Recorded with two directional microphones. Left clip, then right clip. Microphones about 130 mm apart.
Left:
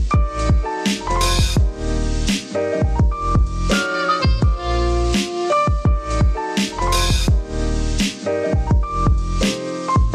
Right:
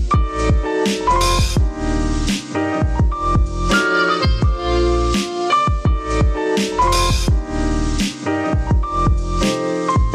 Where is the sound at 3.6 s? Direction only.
Centre (ahead or behind).